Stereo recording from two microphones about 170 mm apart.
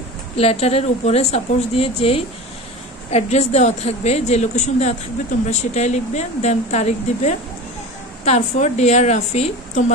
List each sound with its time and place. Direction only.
0.4 s a woman's voice: 35° left (ahead or behind)